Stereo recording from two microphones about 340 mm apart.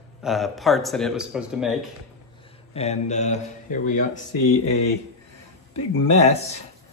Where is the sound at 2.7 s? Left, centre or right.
Centre.